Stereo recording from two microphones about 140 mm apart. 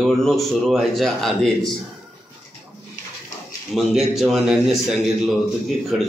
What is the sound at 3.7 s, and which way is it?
A man's voice, centre (ahead or behind).